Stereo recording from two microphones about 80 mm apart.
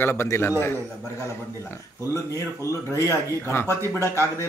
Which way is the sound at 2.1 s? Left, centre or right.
Left.